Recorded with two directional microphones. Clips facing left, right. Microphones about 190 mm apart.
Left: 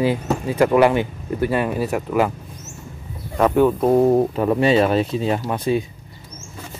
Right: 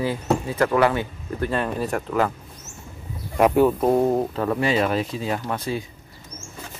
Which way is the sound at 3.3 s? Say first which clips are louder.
Left 1 dB; 5° right (ahead or behind).